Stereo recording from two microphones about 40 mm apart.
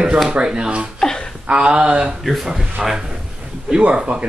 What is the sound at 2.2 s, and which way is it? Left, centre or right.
Speech, centre.